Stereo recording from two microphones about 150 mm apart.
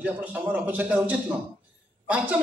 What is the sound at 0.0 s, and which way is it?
A man's voice, 10° right (ahead or behind).